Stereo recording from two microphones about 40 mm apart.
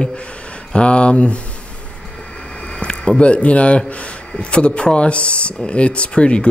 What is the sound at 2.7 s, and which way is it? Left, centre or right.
Speech, left.